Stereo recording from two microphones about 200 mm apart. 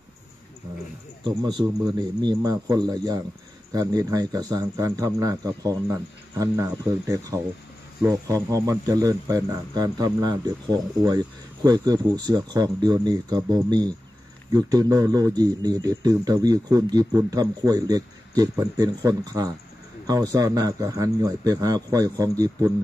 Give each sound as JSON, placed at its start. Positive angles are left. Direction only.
{"t": 1.2, "sound": "speech", "side_deg": -20}